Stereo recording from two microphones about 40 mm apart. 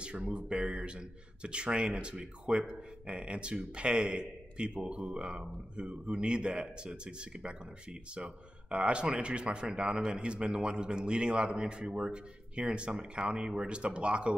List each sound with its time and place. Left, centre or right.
0.0 s speech: right